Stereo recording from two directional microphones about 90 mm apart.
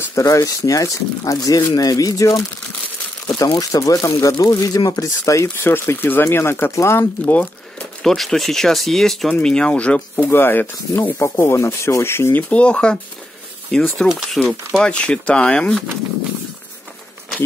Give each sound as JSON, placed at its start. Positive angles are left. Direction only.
{"t": 0.1, "sound": "speech", "side_deg": 40}
{"t": 3.4, "sound": "speech", "side_deg": 45}
{"t": 8.0, "sound": "speech", "side_deg": 5}
{"t": 14.8, "sound": "speech", "side_deg": 15}